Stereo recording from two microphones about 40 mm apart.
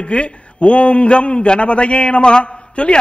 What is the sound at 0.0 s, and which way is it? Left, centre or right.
A man's voice, left.